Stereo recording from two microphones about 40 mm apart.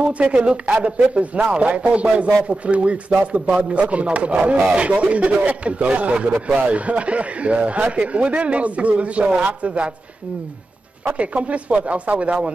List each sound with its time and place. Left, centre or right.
0.0 s a man's voice: right
11.1 s speech: right